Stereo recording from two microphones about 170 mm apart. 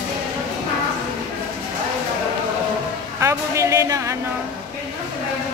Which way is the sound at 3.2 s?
15° right (ahead or behind).